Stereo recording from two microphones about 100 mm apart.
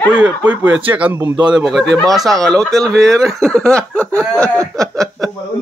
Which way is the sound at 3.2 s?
5° left (ahead or behind).